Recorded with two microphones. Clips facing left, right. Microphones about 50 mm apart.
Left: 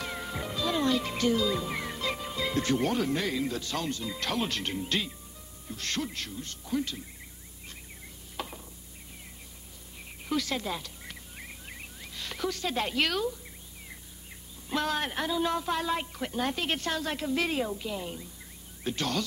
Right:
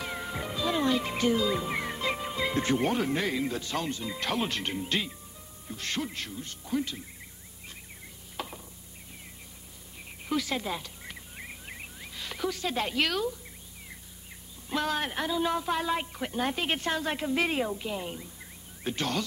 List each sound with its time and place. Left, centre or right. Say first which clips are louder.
0.0 s a woman's voice: right 1 dB; centre
8.4 s a sound: even; centre
10.2 s turkey: even; centre
14.7 s a woman's voice: even; centre; by 19.2 s right